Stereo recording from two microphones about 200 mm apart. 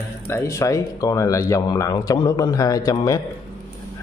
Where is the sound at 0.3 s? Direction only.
15° left (ahead or behind).